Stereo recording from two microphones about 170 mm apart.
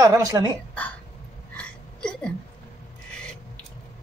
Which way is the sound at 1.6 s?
5° left (ahead or behind).